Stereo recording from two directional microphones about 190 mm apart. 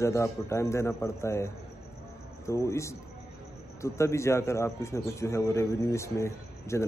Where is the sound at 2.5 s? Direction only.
15° left (ahead or behind).